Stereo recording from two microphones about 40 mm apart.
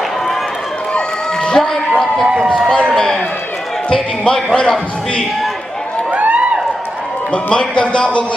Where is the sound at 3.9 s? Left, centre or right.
Centre.